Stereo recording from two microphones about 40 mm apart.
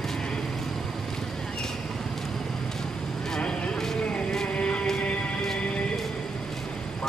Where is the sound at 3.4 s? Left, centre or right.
Left.